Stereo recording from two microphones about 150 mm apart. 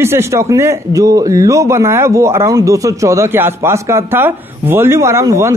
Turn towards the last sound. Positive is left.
turn(degrees=-20)  # may be behind; listen again after turning